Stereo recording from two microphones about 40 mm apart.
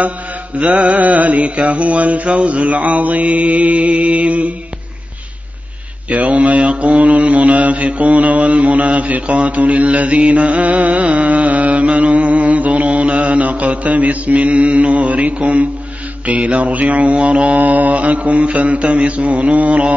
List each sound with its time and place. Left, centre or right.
0.6 s mantra: right
6.0 s mantra: right